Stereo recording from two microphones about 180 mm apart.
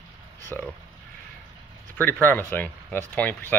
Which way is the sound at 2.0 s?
10° left (ahead or behind).